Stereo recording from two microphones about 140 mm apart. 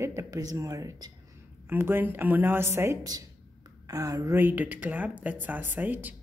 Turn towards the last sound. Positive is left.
turn(degrees=-15)  # may be behind; listen again after turning